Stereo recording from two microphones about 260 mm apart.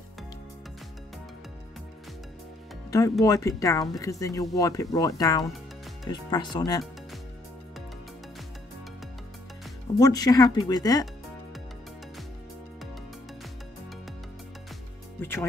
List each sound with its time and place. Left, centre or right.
2.9 s speech: centre
9.9 s speech: centre